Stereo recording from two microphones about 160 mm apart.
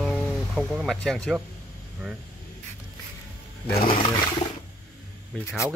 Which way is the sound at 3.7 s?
70° left (ahead or behind).